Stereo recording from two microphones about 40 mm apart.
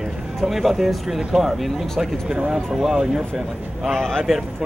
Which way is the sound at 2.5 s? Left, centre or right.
Centre.